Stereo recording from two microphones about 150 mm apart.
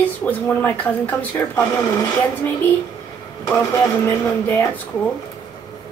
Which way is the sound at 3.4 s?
20° left (ahead or behind).